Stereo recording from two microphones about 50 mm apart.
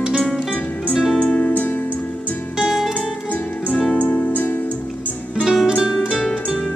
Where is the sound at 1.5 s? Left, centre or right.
Left.